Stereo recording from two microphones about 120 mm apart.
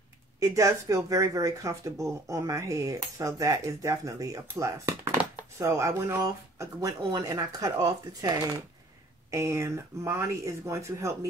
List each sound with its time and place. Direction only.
0.4 s speech: 25° right (ahead or behind)